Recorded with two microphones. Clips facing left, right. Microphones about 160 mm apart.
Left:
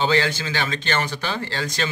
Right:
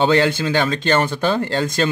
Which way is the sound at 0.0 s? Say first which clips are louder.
Right 5 dB; 55° right (ahead or behind).